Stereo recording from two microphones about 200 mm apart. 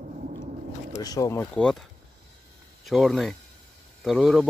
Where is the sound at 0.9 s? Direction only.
20° left (ahead or behind).